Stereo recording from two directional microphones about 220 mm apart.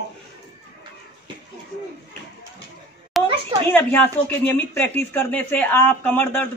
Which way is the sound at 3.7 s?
10° left (ahead or behind).